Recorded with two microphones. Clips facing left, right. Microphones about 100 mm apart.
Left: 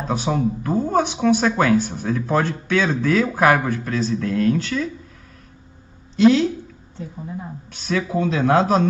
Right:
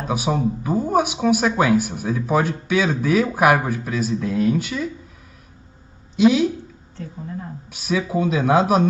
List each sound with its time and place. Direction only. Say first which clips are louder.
0.0 s speech: even; 10° right (ahead or behind)
6.1 s speech: left 1 dB; 10° right (ahead or behind)
7.0 s a sound: even; 10° left (ahead or behind)
7.7 s speech: even; 10° right (ahead or behind)